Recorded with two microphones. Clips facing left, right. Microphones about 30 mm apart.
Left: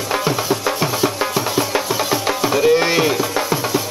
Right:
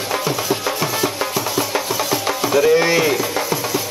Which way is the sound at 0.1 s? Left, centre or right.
Centre.